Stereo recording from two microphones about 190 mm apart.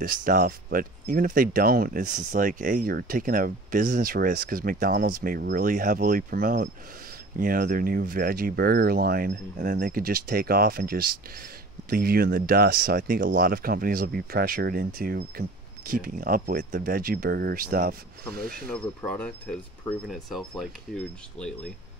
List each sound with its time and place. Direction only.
0.0 s speech: 45° right (ahead or behind)
18.7 s speech: 5° left (ahead or behind)